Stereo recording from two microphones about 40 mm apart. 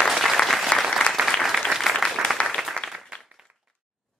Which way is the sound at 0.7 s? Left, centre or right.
Left.